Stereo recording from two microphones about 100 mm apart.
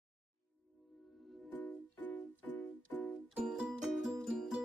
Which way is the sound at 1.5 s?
15° left (ahead or behind).